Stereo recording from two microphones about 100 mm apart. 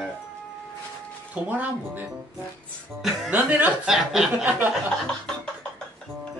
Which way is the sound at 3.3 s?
15° right (ahead or behind).